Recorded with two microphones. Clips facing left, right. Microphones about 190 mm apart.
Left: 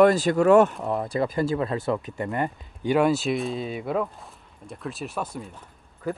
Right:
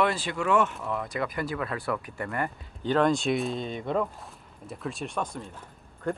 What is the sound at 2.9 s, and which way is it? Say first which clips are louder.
Speech: left 2 dB; 5° left (ahead or behind).